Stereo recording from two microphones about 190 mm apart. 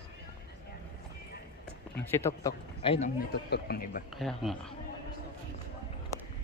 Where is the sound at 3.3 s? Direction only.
60° left (ahead or behind).